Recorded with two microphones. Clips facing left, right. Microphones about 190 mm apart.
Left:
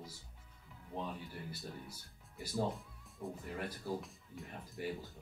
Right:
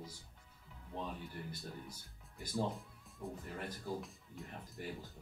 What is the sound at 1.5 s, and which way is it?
A man's voice, 10° left (ahead or behind).